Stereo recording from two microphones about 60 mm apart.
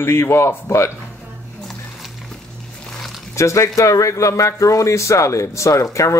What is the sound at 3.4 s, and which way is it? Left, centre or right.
Speech, left.